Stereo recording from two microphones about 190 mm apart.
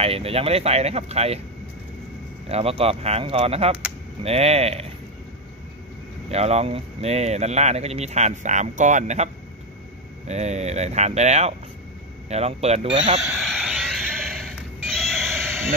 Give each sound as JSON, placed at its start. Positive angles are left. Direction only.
{"t": 0.0, "sound": "speech", "side_deg": -30}
{"t": 2.4, "sound": "speech", "side_deg": -30}
{"t": 6.2, "sound": "speech", "side_deg": -35}
{"t": 13.3, "sound": "a sound", "side_deg": 0}